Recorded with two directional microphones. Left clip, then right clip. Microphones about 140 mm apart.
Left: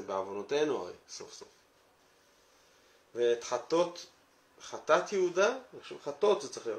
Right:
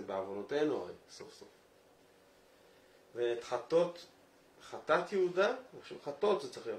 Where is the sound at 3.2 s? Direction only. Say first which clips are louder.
Left 5 dB; 20° left (ahead or behind).